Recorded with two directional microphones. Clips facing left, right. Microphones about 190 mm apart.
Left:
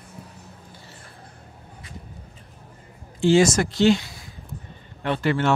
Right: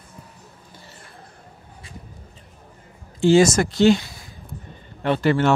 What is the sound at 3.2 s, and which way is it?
Speech, 40° right (ahead or behind).